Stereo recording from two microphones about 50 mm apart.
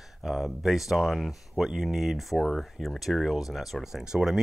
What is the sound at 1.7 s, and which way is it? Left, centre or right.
Speech, centre.